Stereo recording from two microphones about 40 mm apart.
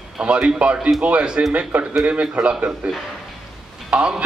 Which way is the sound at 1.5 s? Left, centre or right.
Right.